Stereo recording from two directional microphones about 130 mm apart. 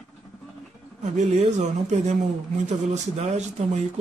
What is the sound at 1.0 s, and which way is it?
Speech, 60° right (ahead or behind).